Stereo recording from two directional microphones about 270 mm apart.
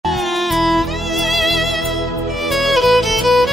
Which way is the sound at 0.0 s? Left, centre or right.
Centre.